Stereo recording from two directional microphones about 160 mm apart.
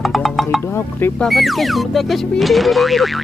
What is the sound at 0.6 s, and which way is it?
Speech, 15° left (ahead or behind).